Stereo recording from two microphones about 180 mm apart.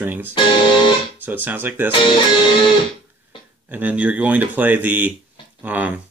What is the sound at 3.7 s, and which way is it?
Speech, 10° right (ahead or behind).